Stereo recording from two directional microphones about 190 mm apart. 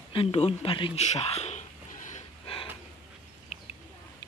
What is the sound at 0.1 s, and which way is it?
Speech, 30° left (ahead or behind).